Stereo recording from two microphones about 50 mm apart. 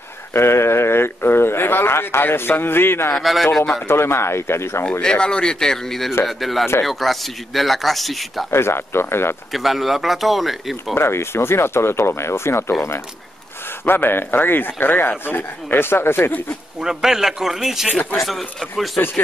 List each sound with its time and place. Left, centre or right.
0.3 s speech: left
3.2 s speech: centre
3.5 s speech: centre
3.8 s speech: left
5.0 s speech: centre
8.5 s speech: left
9.5 s speech: centre
11.0 s speech: left
13.8 s speech: left
16.8 s speech: centre